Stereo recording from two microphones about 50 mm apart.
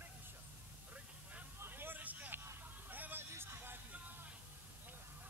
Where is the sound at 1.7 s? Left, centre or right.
Right.